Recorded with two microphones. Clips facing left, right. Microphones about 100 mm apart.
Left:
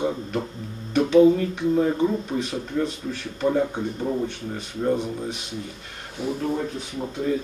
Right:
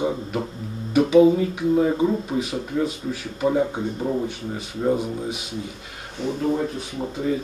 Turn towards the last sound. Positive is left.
turn(degrees=-5)  # may be behind; listen again after turning